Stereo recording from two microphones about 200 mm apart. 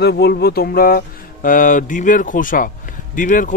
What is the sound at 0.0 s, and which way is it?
A man's voice, 55° left (ahead or behind).